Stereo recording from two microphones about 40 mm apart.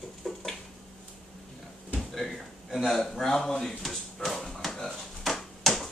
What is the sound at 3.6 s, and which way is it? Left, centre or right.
Speech, centre.